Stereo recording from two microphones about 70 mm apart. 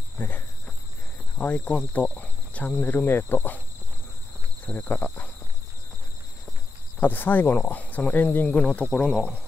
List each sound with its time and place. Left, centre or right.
1.4 s speech: left
4.7 s speech: left
7.0 s speech: left